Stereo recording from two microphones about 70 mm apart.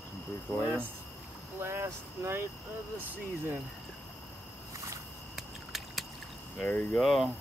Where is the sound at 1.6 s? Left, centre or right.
Right.